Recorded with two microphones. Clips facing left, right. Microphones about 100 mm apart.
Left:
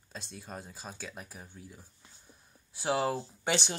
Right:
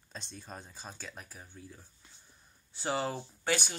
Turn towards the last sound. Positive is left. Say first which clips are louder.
# left 1 dB
turn(degrees=25)  # may be behind; listen again after turning